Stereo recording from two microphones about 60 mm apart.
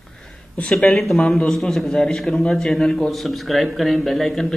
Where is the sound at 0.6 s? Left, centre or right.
Left.